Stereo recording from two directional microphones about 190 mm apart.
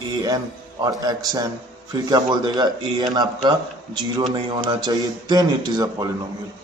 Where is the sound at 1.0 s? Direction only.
20° right (ahead or behind).